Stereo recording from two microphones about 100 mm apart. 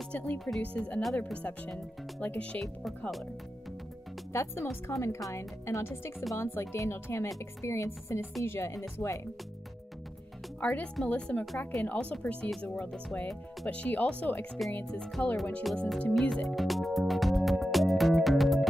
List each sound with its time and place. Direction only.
0.1 s speech: 10° left (ahead or behind)
4.3 s speech: 25° left (ahead or behind)
10.6 s speech: 15° left (ahead or behind)
15.0 s speech: centre (ahead or behind)
16.2 s music: 5° left (ahead or behind)